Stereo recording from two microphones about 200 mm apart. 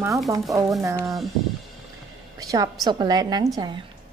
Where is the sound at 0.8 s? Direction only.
15° right (ahead or behind).